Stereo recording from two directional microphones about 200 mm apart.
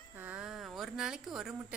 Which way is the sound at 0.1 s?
10° right (ahead or behind).